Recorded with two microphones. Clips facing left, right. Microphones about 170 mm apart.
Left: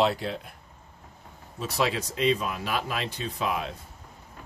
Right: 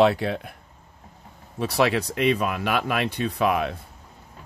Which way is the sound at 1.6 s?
65° right (ahead or behind).